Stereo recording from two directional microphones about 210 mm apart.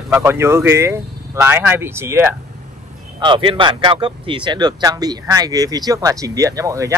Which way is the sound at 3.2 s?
25° right (ahead or behind).